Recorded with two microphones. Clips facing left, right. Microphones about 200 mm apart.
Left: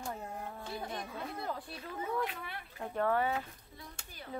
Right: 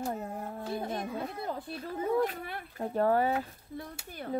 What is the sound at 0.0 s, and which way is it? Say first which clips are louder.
Speech: right 6 dB; 35° right (ahead or behind).